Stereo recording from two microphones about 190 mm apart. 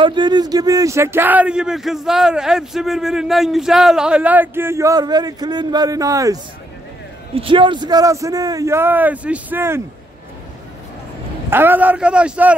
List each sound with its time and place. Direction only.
0.0 s speech: 25° right (ahead or behind)
7.3 s speech: 25° right (ahead or behind); by 9.8 s 10° right (ahead or behind)
11.5 s speech: 10° right (ahead or behind)